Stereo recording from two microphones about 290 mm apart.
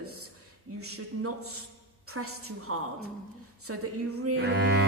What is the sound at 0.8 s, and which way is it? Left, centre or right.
A woman's voice, right.